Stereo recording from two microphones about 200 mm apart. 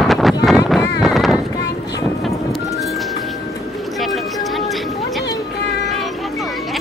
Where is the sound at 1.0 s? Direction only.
Centre (ahead or behind).